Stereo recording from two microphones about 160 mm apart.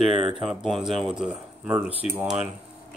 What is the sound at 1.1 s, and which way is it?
Speech, 5° right (ahead or behind).